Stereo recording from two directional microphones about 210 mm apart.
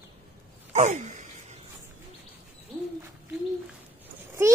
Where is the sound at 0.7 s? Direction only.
35° right (ahead or behind).